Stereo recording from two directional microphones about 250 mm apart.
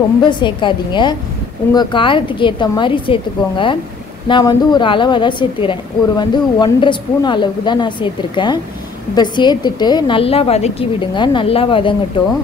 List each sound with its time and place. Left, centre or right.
0.3 s a woman's voice: centre